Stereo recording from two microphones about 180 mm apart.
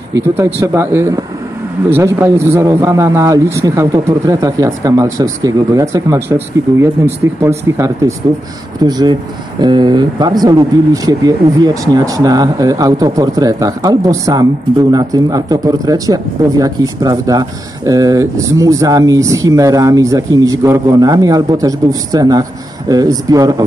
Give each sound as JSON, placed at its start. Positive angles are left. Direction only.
{"t": 0.1, "sound": "speech", "side_deg": -15}